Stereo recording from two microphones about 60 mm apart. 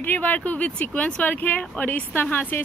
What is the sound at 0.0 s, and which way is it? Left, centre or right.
Speech, left.